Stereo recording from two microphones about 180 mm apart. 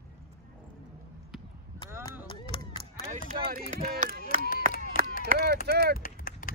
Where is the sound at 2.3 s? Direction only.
25° left (ahead or behind).